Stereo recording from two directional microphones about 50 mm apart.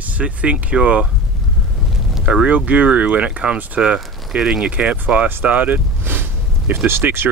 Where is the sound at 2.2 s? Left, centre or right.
Centre.